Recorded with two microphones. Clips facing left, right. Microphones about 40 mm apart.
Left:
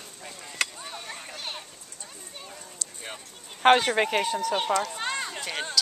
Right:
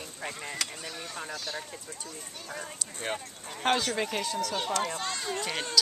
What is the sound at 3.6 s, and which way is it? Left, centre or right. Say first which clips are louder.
Speech: left 8 dB; left.